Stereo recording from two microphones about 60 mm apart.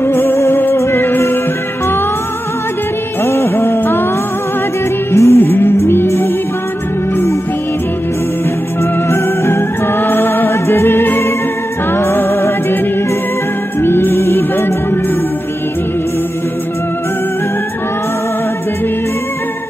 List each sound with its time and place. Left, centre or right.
0.0 s music: left
3.3 s music: left
5.1 s music: left
5.4 s music: left
9.1 s music: left
13.7 s music: left